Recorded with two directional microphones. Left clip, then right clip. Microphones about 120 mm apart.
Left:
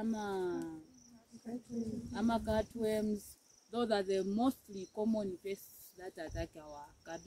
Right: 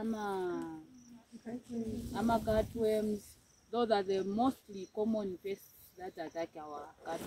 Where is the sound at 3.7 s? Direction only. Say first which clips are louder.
Right 3 dB; 45° left (ahead or behind).